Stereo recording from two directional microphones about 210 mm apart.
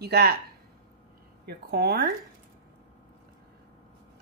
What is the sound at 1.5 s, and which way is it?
Speech, 50° right (ahead or behind).